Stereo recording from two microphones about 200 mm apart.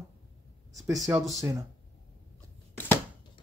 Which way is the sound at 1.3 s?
15° right (ahead or behind).